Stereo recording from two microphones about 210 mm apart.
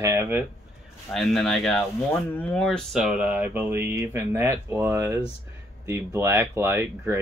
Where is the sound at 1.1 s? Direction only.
Centre (ahead or behind).